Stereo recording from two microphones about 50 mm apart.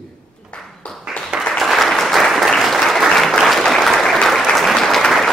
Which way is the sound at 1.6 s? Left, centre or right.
Centre.